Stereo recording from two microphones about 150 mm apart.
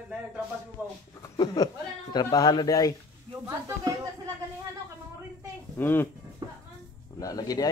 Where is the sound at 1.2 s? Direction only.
25° left (ahead or behind).